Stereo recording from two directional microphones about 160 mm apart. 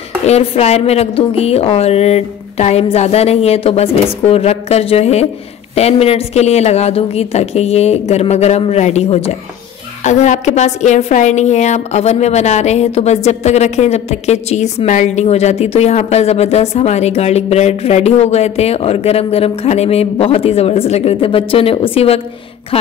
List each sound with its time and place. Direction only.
0.2 s a woman's voice: 40° left (ahead or behind)